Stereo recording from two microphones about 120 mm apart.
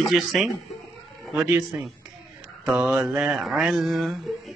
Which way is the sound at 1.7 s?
20° right (ahead or behind).